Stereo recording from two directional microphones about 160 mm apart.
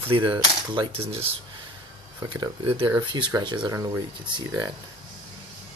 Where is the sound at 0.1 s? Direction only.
30° right (ahead or behind).